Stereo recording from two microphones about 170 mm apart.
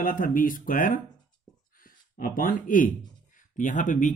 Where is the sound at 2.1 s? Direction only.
55° left (ahead or behind).